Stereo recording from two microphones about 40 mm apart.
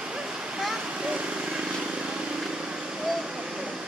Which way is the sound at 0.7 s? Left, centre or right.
Right.